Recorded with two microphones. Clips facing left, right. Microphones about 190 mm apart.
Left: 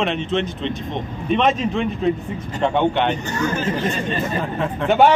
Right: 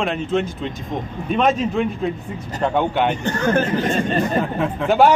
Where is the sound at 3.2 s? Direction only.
55° right (ahead or behind).